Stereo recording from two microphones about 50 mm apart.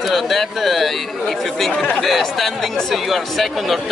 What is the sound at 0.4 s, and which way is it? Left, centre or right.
Speech, centre.